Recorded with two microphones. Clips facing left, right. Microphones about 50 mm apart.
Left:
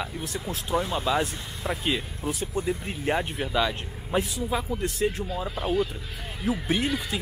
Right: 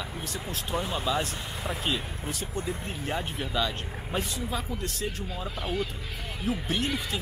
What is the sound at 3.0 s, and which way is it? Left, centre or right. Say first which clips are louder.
Speech: left 6 dB; left.